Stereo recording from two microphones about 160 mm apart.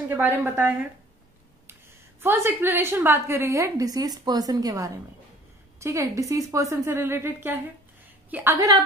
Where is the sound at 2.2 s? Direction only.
15° right (ahead or behind).